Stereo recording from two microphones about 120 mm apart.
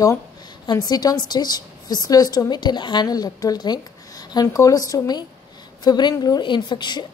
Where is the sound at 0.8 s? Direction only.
35° left (ahead or behind).